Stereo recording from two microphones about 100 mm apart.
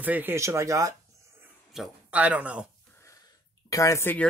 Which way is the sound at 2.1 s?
15° right (ahead or behind).